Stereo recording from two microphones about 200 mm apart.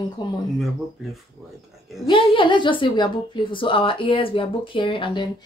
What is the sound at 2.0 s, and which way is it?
A woman's voice, 25° left (ahead or behind).